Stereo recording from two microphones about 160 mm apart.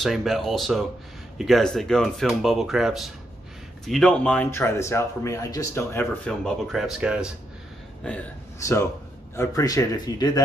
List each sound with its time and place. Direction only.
0.0 s speech: centre (ahead or behind); by 6.0 s 20° left (ahead or behind)
6.2 s speech: centre (ahead or behind)
8.5 s speech: 20° left (ahead or behind)